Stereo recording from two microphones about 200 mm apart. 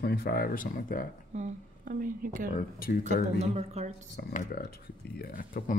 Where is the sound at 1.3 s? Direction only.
40° right (ahead or behind).